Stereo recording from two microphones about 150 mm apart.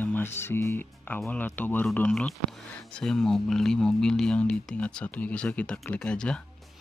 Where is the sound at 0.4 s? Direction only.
15° left (ahead or behind).